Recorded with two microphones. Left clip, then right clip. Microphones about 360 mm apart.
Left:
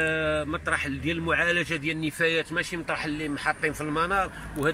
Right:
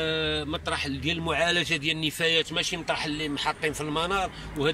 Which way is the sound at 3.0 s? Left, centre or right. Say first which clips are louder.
Even; centre.